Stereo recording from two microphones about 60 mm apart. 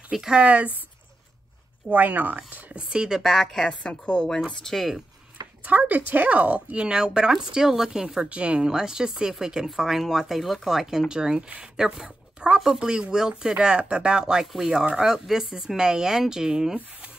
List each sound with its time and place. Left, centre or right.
0.1 s speech: centre
1.9 s speech: right
3.2 s a woman's voice: centre
3.6 s a woman's voice: centre
5.7 s speech: right; by 16.7 s centre